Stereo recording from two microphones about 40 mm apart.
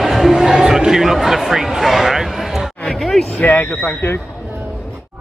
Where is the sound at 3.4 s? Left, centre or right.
Left.